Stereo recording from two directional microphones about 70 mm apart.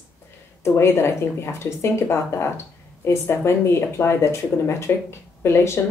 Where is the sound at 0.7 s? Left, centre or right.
Left.